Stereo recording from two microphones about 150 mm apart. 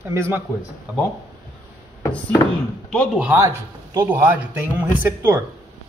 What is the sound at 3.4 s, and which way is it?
Speech, 15° right (ahead or behind).